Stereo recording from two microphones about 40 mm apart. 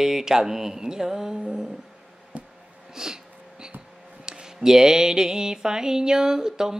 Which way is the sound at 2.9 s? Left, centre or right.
Centre.